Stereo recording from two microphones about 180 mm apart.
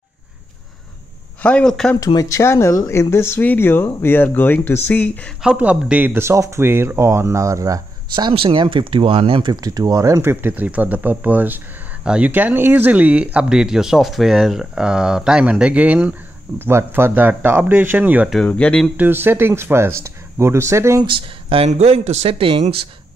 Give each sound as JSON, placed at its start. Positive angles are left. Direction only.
{"t": 1.4, "sound": "speech", "side_deg": 5}
{"t": 2.0, "sound": "speech", "side_deg": 20}
{"t": 5.4, "sound": "speech", "side_deg": -5}
{"t": 18.4, "sound": "speech", "side_deg": 5}
{"t": 18.9, "sound": "speech", "side_deg": -10}
{"t": 21.1, "sound": "speech", "side_deg": -30}